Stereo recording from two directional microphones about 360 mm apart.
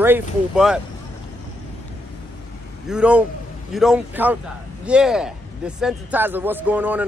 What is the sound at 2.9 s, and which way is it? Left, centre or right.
Speech, centre.